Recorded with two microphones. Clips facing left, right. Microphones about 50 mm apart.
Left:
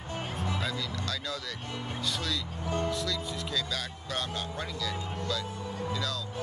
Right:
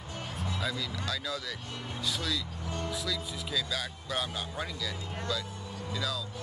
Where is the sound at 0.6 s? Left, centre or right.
Centre.